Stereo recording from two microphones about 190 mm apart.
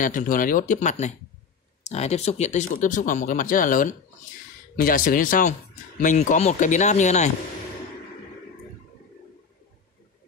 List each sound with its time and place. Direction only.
0.0 s speech: 45° left (ahead or behind)